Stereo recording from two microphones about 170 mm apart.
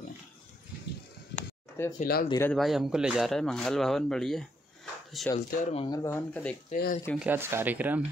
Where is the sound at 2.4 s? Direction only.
5° left (ahead or behind).